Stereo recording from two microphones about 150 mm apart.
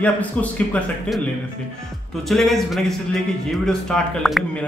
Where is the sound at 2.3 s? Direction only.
Centre (ahead or behind).